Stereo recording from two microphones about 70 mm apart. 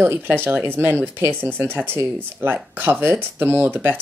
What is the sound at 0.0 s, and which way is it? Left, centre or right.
Speech, right.